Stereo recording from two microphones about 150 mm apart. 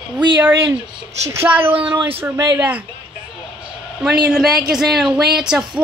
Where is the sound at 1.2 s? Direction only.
15° right (ahead or behind).